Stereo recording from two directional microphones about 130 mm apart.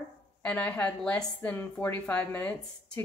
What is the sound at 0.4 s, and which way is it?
Speech, 10° left (ahead or behind).